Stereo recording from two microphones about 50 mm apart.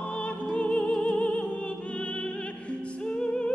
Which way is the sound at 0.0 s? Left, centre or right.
Left.